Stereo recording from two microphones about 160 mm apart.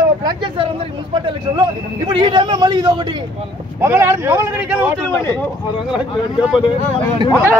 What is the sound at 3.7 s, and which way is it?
Speech, 15° right (ahead or behind).